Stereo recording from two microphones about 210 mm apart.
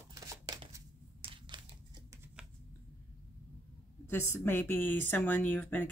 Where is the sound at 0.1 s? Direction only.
20° right (ahead or behind).